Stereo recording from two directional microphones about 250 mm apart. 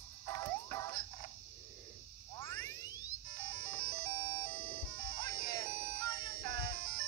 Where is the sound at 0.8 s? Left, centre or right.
Centre.